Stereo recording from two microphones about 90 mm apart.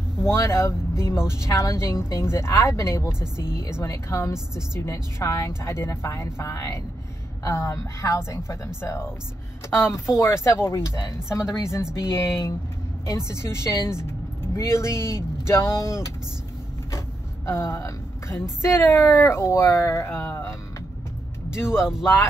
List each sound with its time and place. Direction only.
0.2 s a woman's voice: 30° left (ahead or behind)
13.3 s speech: 30° left (ahead or behind)
17.5 s speech: 30° left (ahead or behind)
21.7 s speech: 5° right (ahead or behind)
22.0 s speech: 25° left (ahead or behind)